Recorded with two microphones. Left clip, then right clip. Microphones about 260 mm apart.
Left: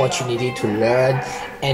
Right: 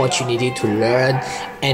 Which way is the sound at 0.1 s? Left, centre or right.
Centre.